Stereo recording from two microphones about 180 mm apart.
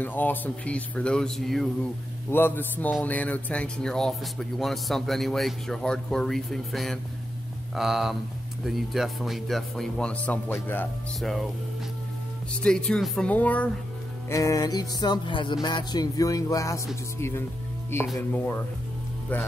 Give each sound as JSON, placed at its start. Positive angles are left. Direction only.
{"t": 0.0, "sound": "speech", "side_deg": 10}
{"t": 12.6, "sound": "speech", "side_deg": 5}
{"t": 14.3, "sound": "music", "side_deg": 20}
{"t": 18.3, "sound": "speech", "side_deg": 5}